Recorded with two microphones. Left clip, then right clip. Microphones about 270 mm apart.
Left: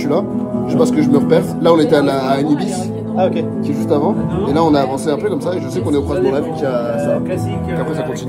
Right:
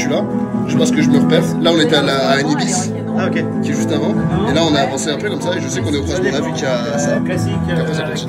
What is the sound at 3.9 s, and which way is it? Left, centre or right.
Speech, centre.